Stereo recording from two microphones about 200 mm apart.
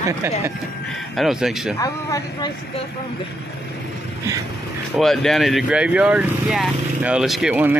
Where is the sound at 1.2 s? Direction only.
Centre (ahead or behind).